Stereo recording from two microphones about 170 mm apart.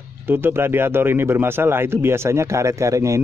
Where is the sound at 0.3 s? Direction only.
15° right (ahead or behind).